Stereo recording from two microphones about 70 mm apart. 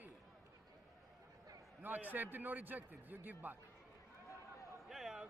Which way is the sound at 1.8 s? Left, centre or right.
Right.